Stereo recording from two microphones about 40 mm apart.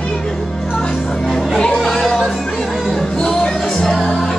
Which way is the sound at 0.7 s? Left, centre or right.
Centre.